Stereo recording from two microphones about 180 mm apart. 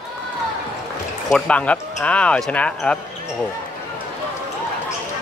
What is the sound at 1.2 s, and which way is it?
Speech, 5° left (ahead or behind).